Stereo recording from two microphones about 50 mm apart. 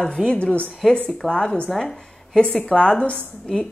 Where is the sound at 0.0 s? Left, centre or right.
Centre.